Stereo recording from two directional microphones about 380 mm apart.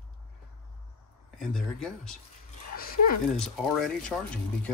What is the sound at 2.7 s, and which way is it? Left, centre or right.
Dog, left.